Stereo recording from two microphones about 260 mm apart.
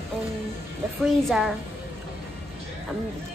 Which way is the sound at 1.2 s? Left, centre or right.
Centre.